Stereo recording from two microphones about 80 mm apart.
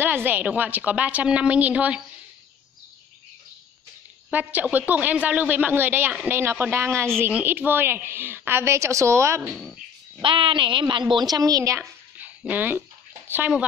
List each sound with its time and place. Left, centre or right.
0.0 s a woman's voice: right
4.3 s a woman's voice: centre; by 9.5 s right
10.2 s a woman's voice: right
12.2 s a sound: right